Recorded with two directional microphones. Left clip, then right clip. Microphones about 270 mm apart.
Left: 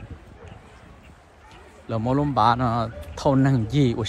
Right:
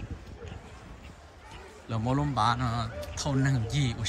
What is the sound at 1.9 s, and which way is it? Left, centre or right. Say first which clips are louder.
A man's voice: left 7 dB; centre.